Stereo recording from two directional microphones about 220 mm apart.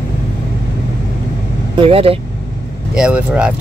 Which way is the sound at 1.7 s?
25° right (ahead or behind).